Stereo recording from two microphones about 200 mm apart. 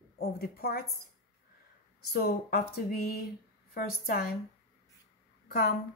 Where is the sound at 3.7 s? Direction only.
50° left (ahead or behind).